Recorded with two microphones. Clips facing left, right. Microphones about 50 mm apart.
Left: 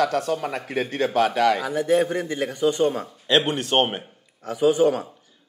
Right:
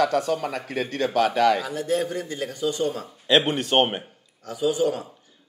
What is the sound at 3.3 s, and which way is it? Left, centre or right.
Speech, centre.